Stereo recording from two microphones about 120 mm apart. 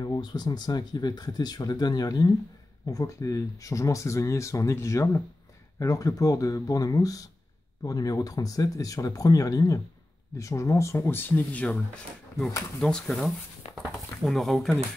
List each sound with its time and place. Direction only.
0.0 s speech: 35° left (ahead or behind); by 14.8 s centre (ahead or behind)